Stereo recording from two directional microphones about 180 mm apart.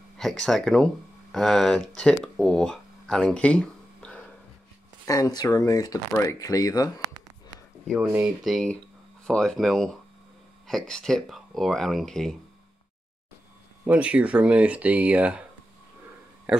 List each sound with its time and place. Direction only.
0.2 s speech: centre (ahead or behind)
2.2 s a sound: 5° left (ahead or behind)
5.0 s speech: 20° left (ahead or behind)
7.8 s speech: 5° right (ahead or behind)
10.9 s speech: 5° left (ahead or behind)
13.8 s speech: 5° right (ahead or behind)
16.5 s speech: 5° right (ahead or behind)